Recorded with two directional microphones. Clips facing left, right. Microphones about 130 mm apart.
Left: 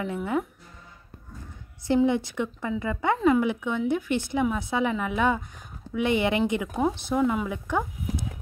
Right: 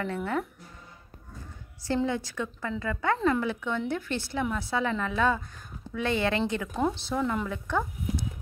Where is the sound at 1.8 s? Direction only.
20° left (ahead or behind).